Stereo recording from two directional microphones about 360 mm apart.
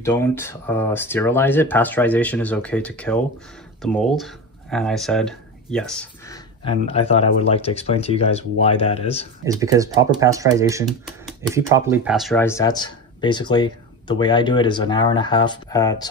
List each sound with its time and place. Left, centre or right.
0.0 s speech: centre
9.4 s speech: centre